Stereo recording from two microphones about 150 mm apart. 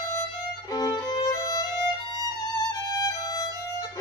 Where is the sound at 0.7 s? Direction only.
25° left (ahead or behind).